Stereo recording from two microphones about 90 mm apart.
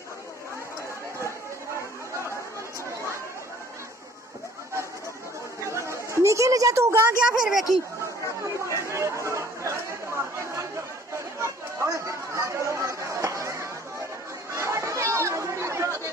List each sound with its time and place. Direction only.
5.7 s chatter: 30° right (ahead or behind)
7.3 s speech: 5° right (ahead or behind)
8.7 s chatter: 35° right (ahead or behind)